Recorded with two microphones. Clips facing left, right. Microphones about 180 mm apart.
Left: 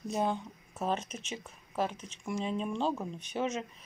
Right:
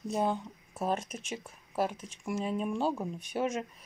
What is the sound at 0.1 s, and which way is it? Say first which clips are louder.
Speech: right 1 dB; 5° right (ahead or behind).